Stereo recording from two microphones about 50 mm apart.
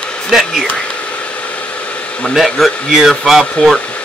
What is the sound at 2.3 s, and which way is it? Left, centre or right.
Speech, centre.